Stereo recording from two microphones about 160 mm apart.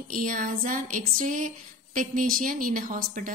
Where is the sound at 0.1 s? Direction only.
55° right (ahead or behind).